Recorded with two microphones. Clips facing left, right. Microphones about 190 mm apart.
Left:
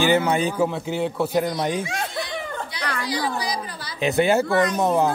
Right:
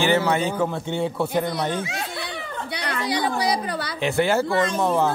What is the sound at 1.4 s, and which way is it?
Speech, 15° left (ahead or behind).